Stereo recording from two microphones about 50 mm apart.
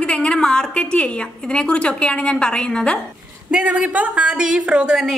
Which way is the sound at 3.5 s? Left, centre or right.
Right.